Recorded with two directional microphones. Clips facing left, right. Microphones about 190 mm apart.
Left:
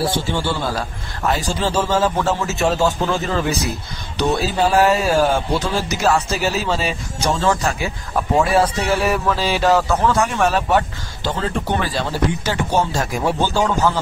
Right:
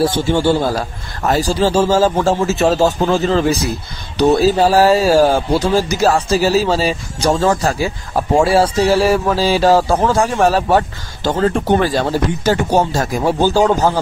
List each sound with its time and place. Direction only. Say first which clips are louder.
0.0 s a man's voice: right 7 dB; 45° right (ahead or behind)